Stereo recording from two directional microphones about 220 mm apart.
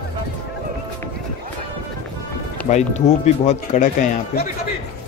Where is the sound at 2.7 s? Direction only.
30° left (ahead or behind).